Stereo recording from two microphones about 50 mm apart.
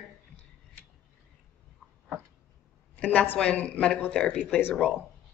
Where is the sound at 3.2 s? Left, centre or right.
Left.